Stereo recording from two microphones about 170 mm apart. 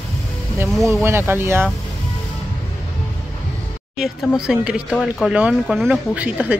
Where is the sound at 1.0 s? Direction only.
15° right (ahead or behind).